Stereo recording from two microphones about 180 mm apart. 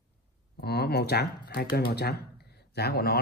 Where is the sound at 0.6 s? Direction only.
60° left (ahead or behind).